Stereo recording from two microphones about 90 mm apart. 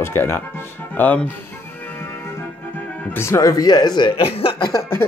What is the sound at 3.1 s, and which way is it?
Speech, 30° left (ahead or behind).